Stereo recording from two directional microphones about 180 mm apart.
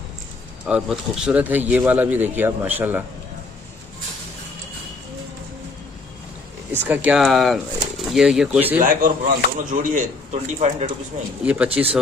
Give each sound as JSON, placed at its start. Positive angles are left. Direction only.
{"t": 0.7, "sound": "speech", "side_deg": -5}
{"t": 6.9, "sound": "speech", "side_deg": -10}
{"t": 8.8, "sound": "speech", "side_deg": -50}
{"t": 11.4, "sound": "speech", "side_deg": -5}